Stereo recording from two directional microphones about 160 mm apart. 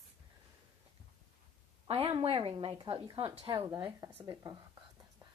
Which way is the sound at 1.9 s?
35° right (ahead or behind).